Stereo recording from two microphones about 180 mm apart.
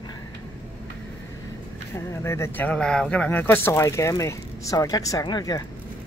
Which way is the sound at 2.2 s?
15° left (ahead or behind).